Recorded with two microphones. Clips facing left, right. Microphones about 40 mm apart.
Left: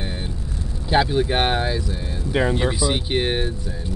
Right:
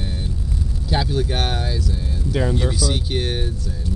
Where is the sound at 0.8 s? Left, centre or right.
Left.